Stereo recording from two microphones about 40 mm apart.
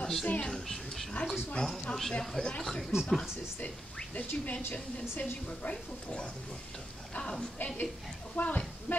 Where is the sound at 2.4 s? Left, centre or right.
Left.